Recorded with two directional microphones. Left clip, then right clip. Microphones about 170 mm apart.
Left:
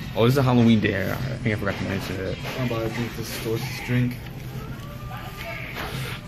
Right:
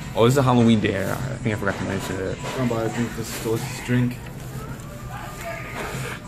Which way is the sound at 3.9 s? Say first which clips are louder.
Right 3 dB; 35° right (ahead or behind).